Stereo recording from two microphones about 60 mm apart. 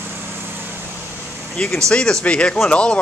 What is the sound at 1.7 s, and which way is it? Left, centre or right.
Speech, centre.